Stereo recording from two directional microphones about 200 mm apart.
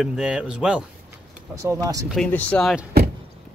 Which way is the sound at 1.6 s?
15° right (ahead or behind).